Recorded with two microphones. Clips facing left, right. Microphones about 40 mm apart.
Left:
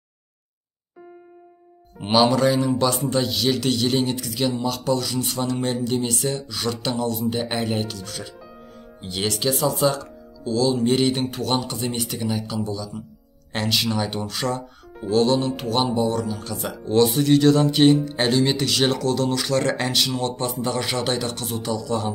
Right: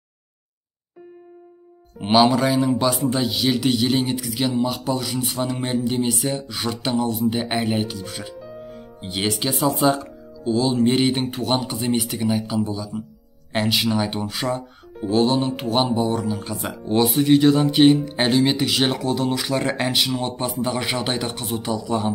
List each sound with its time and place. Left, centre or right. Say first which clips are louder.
2.0 s speech: right 2 dB; centre